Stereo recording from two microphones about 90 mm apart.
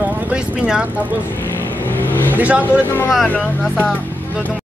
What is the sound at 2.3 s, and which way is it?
Speech, 20° right (ahead or behind).